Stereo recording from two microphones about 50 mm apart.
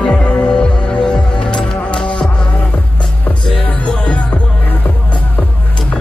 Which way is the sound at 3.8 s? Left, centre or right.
Left.